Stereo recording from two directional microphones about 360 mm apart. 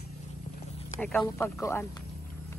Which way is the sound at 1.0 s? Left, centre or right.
Centre.